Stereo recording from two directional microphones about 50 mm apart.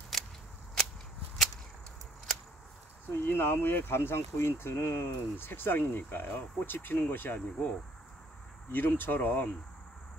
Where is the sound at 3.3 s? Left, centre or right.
Left.